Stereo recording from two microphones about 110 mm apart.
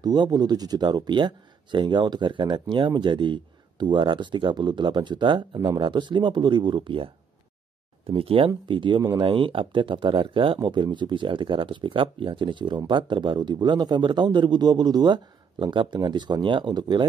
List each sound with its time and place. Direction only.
0.0 s speech: 40° right (ahead or behind)
8.1 s speech: 55° right (ahead or behind)